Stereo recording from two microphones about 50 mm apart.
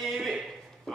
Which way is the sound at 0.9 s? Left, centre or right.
Centre.